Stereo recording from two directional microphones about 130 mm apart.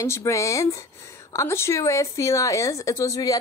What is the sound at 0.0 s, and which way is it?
A woman's voice, 20° left (ahead or behind).